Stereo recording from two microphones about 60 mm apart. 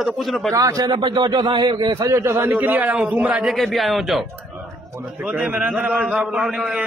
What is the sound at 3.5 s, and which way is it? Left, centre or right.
Speech, centre.